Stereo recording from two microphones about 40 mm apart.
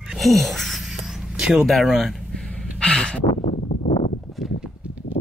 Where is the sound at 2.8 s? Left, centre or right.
Left.